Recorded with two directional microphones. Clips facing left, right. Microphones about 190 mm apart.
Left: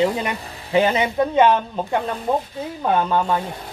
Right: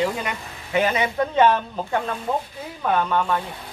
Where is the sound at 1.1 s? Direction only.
15° left (ahead or behind).